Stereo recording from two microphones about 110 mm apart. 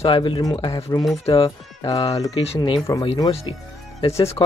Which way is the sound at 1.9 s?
35° left (ahead or behind).